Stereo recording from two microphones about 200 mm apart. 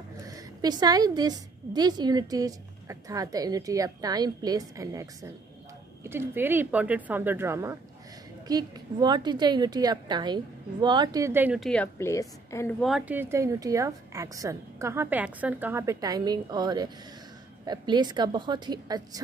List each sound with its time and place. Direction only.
0.3 s a woman's voice: 20° right (ahead or behind); by 12.7 s 15° left (ahead or behind)
12.8 s a woman's voice: 5° right (ahead or behind)